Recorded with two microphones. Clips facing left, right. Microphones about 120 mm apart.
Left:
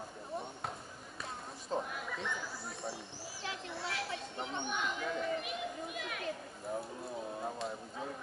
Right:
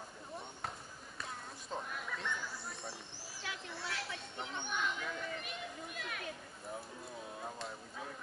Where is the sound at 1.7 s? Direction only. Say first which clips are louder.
Left 5 dB; centre (ahead or behind).